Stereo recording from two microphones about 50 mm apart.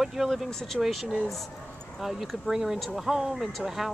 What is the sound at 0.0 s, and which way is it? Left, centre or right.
Speech, centre.